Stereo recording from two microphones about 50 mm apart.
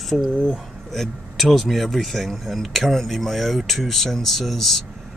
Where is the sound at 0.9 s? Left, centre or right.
Centre.